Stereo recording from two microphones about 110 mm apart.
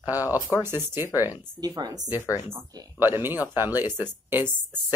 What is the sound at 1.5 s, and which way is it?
Speech, 35° right (ahead or behind).